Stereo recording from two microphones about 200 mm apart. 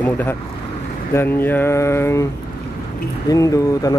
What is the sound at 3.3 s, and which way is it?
Speech, 15° left (ahead or behind).